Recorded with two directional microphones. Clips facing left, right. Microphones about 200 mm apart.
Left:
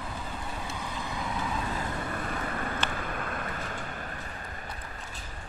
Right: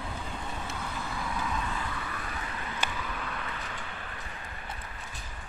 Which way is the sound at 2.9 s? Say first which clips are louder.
Left 3 dB; 50° left (ahead or behind).